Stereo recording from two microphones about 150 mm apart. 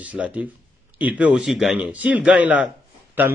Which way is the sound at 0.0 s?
10° right (ahead or behind).